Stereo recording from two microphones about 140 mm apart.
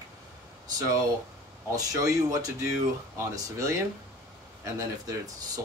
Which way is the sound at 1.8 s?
25° right (ahead or behind).